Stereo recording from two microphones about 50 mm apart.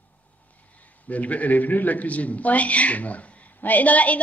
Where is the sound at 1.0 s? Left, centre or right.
Left.